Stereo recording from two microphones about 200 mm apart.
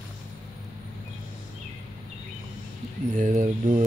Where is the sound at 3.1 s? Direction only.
40° right (ahead or behind).